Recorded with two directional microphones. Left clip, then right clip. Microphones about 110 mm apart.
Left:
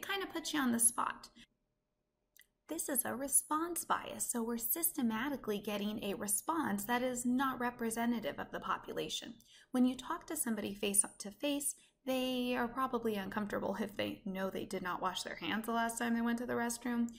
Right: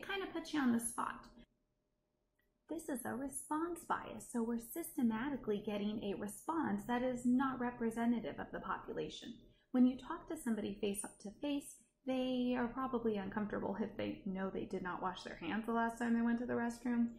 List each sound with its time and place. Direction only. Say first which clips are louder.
0.0 s a woman's voice: left 3 dB; 15° left (ahead or behind)
2.7 s a woman's voice: left 3 dB; 20° left (ahead or behind)